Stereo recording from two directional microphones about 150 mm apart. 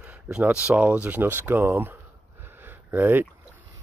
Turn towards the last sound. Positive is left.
turn(degrees=-15)  # may be behind; listen again after turning